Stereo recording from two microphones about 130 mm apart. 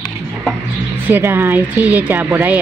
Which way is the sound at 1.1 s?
20° right (ahead or behind).